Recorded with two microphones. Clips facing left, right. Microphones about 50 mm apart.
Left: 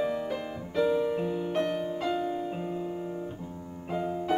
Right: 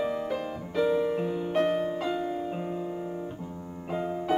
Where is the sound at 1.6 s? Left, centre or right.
Centre.